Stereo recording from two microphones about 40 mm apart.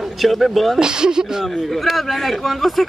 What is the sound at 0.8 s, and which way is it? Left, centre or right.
Speech, centre.